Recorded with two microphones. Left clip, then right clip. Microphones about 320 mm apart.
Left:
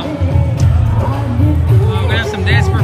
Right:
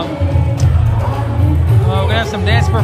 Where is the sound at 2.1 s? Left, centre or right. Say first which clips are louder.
Left 3 dB; centre.